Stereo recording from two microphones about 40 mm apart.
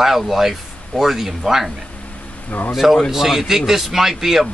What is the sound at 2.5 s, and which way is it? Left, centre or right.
Speech, left.